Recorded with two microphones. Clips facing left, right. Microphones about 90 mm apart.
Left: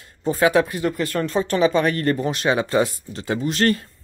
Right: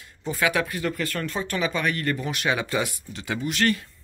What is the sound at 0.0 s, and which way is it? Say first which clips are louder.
Speech: left 7 dB; 35° left (ahead or behind).